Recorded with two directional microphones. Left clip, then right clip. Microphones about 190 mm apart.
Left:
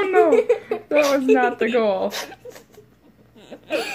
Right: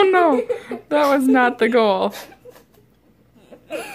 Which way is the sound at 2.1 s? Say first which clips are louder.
Left 6 dB; 35° left (ahead or behind).